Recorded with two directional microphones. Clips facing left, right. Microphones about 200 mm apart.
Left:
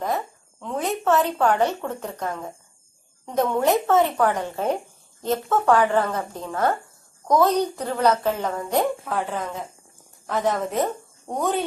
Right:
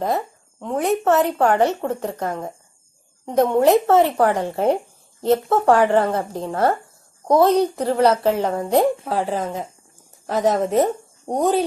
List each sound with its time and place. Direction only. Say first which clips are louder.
0.7 s a woman's voice: right 5 dB; 55° right (ahead or behind)
1.1 s a woman's voice: right 1 dB; 25° right (ahead or behind)
7.8 s a woman's voice: right 4 dB; 30° right (ahead or behind)